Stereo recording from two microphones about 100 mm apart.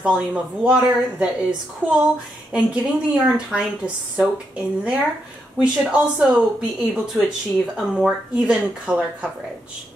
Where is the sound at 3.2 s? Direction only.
10° right (ahead or behind).